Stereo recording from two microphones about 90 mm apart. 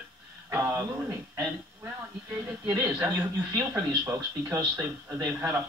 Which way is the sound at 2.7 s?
25° right (ahead or behind).